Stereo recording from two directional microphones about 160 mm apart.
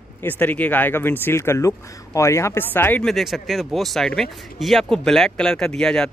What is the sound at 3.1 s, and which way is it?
Speech, centre (ahead or behind).